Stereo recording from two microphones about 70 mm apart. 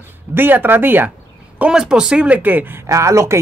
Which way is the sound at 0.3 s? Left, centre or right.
Right.